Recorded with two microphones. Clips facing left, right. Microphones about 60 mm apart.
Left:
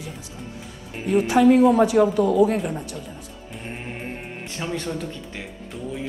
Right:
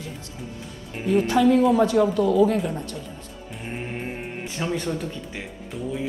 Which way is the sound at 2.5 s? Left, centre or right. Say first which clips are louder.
Even; centre.